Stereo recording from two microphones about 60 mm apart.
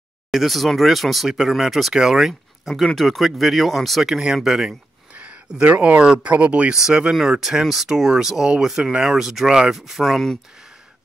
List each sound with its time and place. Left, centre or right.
0.3 s speech: centre
5.1 s speech: right
6.7 s speech: centre